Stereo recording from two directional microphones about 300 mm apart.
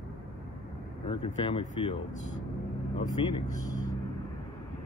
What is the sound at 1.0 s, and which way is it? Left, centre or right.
Speech, centre.